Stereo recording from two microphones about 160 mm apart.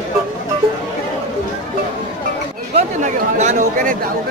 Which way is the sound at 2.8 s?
45° right (ahead or behind).